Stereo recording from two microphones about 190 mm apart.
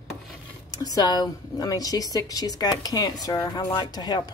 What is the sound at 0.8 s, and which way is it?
Speech, 20° left (ahead or behind).